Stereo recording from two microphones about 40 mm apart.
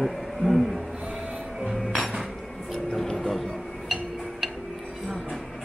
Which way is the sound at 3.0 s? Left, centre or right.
Centre.